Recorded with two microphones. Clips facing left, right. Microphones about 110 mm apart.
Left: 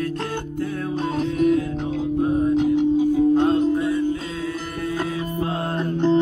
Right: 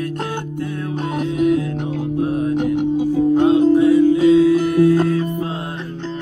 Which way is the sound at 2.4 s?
65° right (ahead or behind).